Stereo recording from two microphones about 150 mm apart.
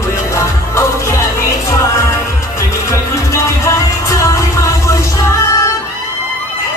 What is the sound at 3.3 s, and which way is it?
Music, 20° left (ahead or behind).